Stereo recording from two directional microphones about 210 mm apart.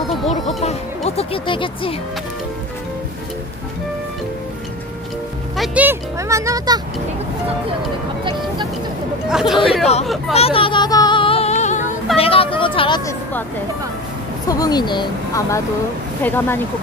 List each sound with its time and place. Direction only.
0.3 s speech: 30° left (ahead or behind)
5.6 s speech: 10° right (ahead or behind)
9.3 s speech: centre (ahead or behind)
10.3 s music: 25° left (ahead or behind)
12.2 s speech: 25° left (ahead or behind)
14.5 s speech: 20° left (ahead or behind)